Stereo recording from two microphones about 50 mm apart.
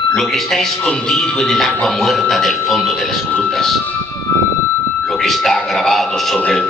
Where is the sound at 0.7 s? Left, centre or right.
Left.